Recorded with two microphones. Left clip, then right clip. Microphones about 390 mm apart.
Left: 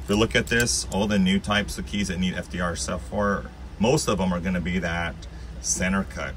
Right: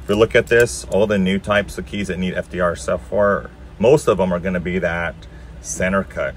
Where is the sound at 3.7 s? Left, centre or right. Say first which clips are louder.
Right 9 dB; centre.